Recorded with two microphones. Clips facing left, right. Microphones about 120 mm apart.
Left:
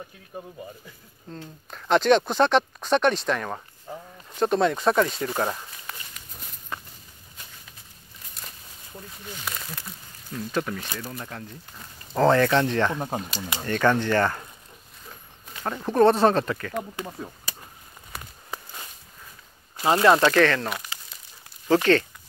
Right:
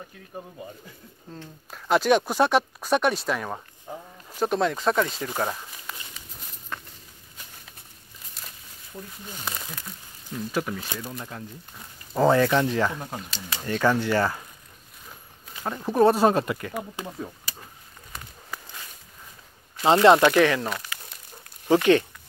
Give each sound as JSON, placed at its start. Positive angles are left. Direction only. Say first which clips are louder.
{"t": 1.3, "sound": "speech", "louder": "left 2 dB", "side_deg": -5}
{"t": 3.9, "sound": "a sound", "louder": "even", "side_deg": -15}
{"t": 4.3, "sound": "speech", "louder": "left 2 dB", "side_deg": -5}
{"t": 6.7, "sound": "walk", "louder": "left 1 dB", "side_deg": 5}
{"t": 9.4, "sound": "speech", "louder": "right 1 dB", "side_deg": -15}
{"t": 9.7, "sound": "speech", "louder": "left 1 dB", "side_deg": 0}
{"t": 12.1, "sound": "speech", "louder": "even", "side_deg": -10}
{"t": 13.3, "sound": "speech", "louder": "left 3 dB", "side_deg": 15}
{"t": 13.7, "sound": "speech", "louder": "left 1 dB", "side_deg": -5}
{"t": 15.6, "sound": "speech", "louder": "left 1 dB", "side_deg": -5}
{"t": 19.8, "sound": "speech", "louder": "right 2 dB", "side_deg": -25}
{"t": 21.9, "sound": "speech", "louder": "right 2 dB", "side_deg": -15}